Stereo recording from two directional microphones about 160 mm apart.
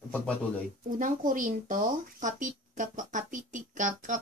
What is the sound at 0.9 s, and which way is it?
A child's voice, 55° right (ahead or behind).